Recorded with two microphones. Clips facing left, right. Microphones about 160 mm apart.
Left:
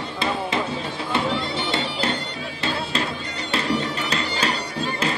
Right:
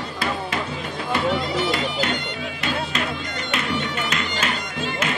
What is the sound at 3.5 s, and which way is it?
Bagpipes, 35° left (ahead or behind).